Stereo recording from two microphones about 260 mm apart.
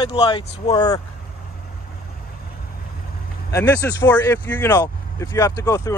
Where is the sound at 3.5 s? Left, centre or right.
Centre.